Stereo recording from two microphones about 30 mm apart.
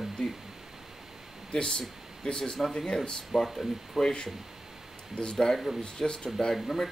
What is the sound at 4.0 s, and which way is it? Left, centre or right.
Speech, left.